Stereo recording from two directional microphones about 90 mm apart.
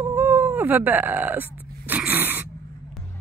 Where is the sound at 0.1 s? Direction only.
20° right (ahead or behind).